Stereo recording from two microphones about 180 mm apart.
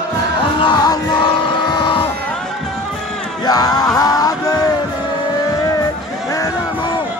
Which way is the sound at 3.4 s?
20° left (ahead or behind).